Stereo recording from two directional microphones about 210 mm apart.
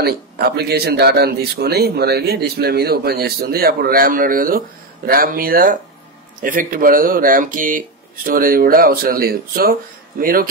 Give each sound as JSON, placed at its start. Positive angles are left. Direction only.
{"t": 0.0, "sound": "speech", "side_deg": -50}